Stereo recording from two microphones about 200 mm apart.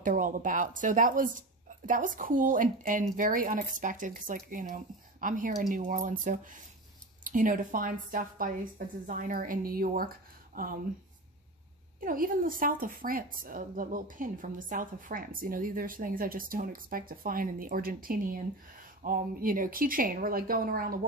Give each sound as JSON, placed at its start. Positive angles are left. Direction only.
{"t": 0.0, "sound": "a woman's voice", "side_deg": -40}
{"t": 12.0, "sound": "a woman's voice", "side_deg": -45}